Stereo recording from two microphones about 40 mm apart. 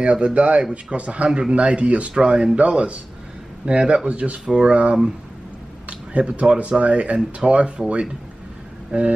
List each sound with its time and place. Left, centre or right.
0.0 s speech: right
8.9 s speech: right